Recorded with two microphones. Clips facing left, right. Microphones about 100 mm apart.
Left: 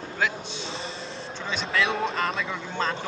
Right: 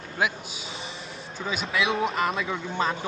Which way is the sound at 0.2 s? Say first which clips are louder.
Right 1 dB; 10° right (ahead or behind).